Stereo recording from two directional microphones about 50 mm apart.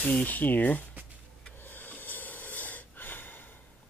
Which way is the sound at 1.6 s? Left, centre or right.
Left.